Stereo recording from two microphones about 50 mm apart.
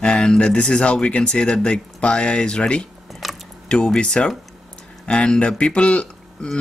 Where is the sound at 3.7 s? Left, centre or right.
Centre.